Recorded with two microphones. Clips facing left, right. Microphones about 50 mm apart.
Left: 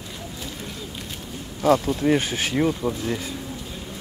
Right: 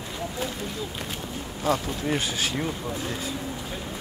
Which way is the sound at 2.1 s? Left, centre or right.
Left.